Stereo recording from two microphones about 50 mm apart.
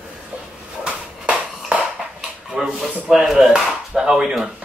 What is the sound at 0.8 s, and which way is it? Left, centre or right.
Bouncing, centre.